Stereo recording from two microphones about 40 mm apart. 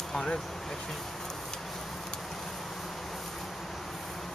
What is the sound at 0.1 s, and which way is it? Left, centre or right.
Speech, left.